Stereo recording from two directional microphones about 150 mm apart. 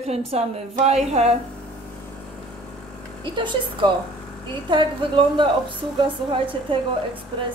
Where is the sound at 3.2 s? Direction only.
30° right (ahead or behind).